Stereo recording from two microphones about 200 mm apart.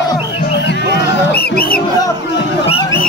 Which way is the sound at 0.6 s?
60° left (ahead or behind).